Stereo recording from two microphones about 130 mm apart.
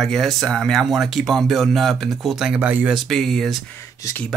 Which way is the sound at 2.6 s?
15° right (ahead or behind).